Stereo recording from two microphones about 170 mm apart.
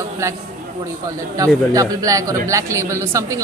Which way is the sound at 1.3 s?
20° right (ahead or behind).